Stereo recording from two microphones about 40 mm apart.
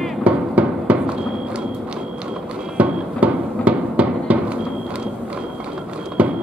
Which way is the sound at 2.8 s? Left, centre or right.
Right.